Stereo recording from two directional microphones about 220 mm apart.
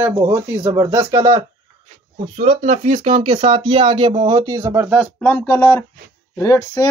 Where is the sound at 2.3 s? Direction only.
30° right (ahead or behind); by 5.0 s 10° right (ahead or behind).